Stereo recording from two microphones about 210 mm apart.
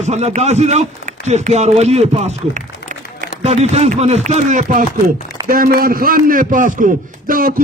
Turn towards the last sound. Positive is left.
turn(degrees=-45)  # may be behind; listen again after turning